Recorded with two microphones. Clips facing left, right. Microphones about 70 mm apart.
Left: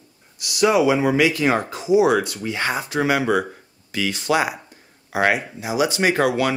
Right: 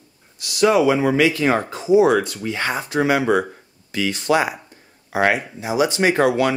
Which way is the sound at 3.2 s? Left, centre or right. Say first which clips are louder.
Right 2 dB; centre.